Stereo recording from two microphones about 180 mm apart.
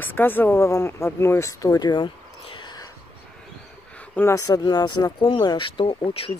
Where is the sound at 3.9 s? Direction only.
10° left (ahead or behind); by 6.3 s 30° left (ahead or behind).